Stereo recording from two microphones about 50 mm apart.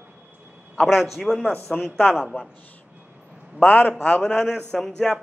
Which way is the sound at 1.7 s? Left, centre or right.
Centre.